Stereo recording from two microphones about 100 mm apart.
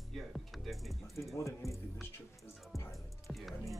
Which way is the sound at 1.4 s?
30° left (ahead or behind).